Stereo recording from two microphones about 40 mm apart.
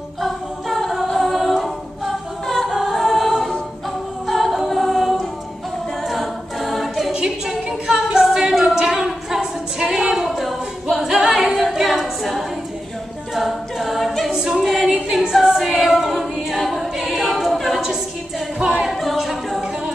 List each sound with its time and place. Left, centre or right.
0.2 s a capella: centre
2.9 s music: centre
4.3 s choir: centre
7.1 s a capella: centre
14.3 s a capella: centre
18.6 s a capella: centre
18.9 s a capella: centre